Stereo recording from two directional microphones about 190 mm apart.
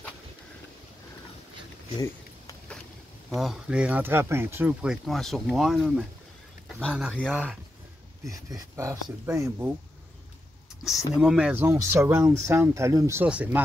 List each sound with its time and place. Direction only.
2.0 s a sound: 20° left (ahead or behind)
3.3 s speech: centre (ahead or behind)
8.5 s speech: 15° right (ahead or behind)
10.8 s speech: centre (ahead or behind)